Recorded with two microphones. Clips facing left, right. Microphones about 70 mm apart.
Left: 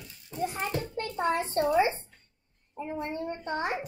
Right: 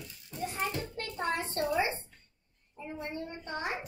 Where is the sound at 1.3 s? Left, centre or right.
Left.